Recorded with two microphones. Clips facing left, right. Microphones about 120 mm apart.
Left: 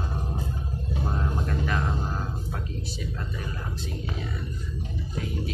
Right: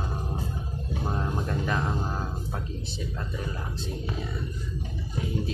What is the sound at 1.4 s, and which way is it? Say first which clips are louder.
Speech: even; 20° right (ahead or behind).